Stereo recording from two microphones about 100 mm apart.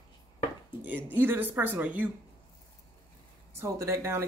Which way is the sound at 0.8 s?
20° right (ahead or behind).